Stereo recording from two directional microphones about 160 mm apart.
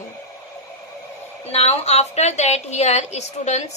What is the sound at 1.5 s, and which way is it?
A woman's voice, 40° left (ahead or behind).